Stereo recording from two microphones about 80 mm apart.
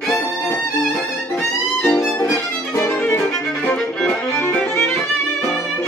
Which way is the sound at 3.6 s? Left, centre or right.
Centre.